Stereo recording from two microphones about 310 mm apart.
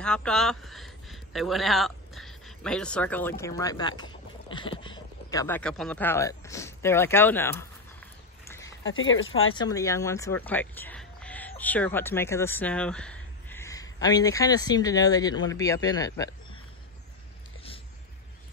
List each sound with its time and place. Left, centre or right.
0.0 s speech: centre
8.6 s speech: left
9.6 s speech: centre